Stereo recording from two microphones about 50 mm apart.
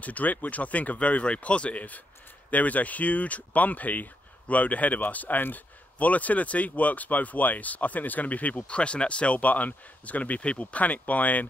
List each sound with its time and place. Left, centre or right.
0.0 s speech: left